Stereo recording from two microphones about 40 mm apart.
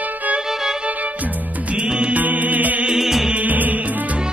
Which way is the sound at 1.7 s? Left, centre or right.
Right.